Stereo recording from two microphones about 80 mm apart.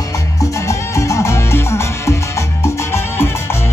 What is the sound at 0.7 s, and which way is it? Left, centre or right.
Music, left.